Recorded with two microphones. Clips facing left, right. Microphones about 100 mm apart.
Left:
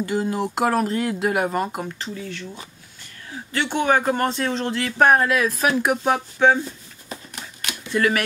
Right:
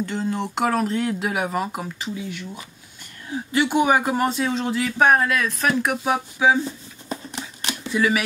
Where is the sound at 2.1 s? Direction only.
15° right (ahead or behind).